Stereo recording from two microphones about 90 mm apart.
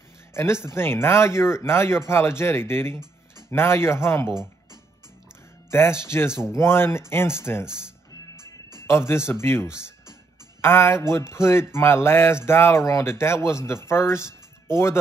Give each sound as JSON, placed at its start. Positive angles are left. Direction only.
{"t": 0.3, "sound": "speech", "side_deg": 30}
{"t": 5.7, "sound": "speech", "side_deg": 30}
{"t": 8.4, "sound": "music", "side_deg": -50}
{"t": 8.8, "sound": "speech", "side_deg": 30}